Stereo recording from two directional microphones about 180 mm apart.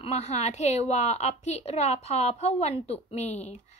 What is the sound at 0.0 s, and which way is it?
A woman's voice, 35° left (ahead or behind).